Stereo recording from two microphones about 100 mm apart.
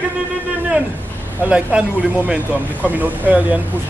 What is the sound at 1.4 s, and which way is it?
Speech, 10° right (ahead or behind).